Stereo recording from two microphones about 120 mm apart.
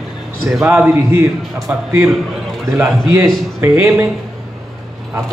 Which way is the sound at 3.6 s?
15° right (ahead or behind).